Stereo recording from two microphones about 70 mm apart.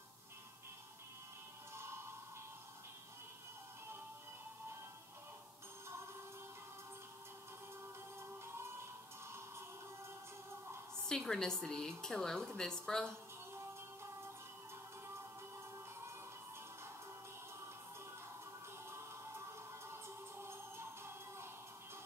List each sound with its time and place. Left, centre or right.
11.1 s a woman's voice: centre
20.4 s music: right